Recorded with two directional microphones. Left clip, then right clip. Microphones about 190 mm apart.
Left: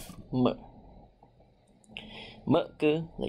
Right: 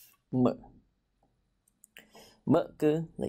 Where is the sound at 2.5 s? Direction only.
30° right (ahead or behind).